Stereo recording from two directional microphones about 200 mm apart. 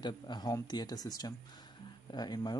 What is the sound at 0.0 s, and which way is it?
Speech, 20° left (ahead or behind).